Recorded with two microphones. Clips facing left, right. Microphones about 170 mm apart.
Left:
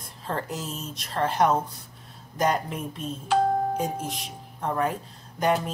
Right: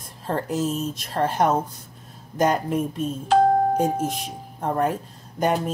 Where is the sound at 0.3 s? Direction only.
55° right (ahead or behind).